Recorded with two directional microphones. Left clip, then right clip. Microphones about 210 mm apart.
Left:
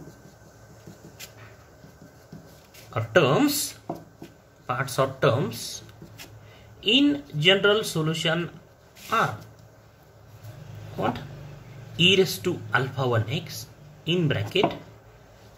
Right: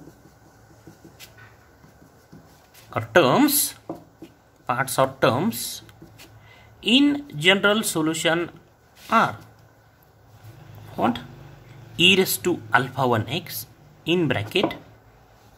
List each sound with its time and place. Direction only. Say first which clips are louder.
2.9 s speech: right 3 dB; 45° right (ahead or behind)
6.8 s speech: right 2 dB; 45° right (ahead or behind)
11.0 s a sound: right 4 dB; 50° right (ahead or behind)
12.0 s speech: right 2 dB; 50° right (ahead or behind)